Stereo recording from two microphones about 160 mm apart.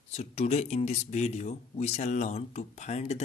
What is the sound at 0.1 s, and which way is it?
Speech, 40° left (ahead or behind).